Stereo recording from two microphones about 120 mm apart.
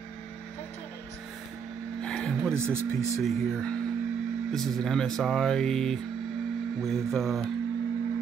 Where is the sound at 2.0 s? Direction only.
5° left (ahead or behind).